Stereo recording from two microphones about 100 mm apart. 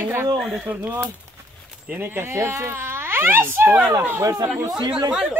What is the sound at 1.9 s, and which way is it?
Speech, 25° right (ahead or behind).